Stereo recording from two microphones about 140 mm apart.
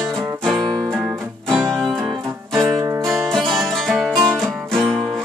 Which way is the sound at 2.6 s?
25° right (ahead or behind).